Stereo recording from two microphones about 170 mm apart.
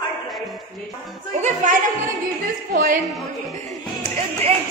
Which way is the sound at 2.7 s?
55° right (ahead or behind).